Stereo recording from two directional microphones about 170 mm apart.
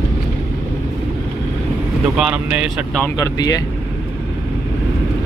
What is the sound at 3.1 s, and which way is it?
Speech, 20° left (ahead or behind).